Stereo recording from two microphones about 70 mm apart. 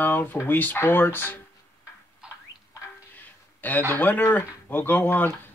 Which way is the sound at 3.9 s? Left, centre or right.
Left.